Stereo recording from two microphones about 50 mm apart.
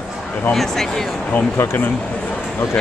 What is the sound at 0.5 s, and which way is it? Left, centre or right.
Speech, centre.